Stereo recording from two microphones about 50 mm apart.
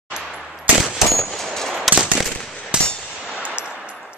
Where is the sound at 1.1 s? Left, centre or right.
Centre.